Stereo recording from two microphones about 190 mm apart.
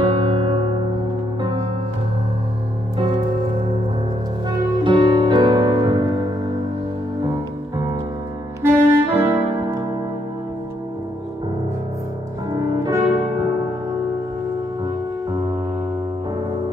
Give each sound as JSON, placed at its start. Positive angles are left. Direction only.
{"t": 0.0, "sound": "music", "side_deg": -25}
{"t": 4.5, "sound": "music", "side_deg": -25}
{"t": 7.7, "sound": "music", "side_deg": -20}
{"t": 12.8, "sound": "music", "side_deg": -20}